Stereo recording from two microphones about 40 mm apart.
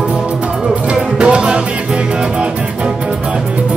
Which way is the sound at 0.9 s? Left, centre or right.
Right.